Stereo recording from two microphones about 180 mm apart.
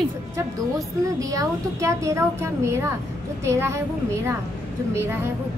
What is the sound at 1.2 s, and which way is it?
A woman's voice, 20° right (ahead or behind).